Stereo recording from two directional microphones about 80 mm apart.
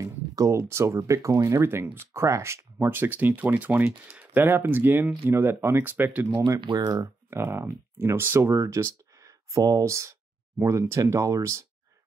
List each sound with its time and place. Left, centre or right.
0.0 s speech: right
6.8 s speech: right
7.2 s speech: right